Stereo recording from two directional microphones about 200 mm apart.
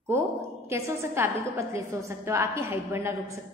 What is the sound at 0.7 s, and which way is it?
A woman's voice, 15° right (ahead or behind).